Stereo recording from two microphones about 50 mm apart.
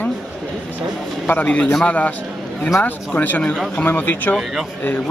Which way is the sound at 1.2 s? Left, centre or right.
Left.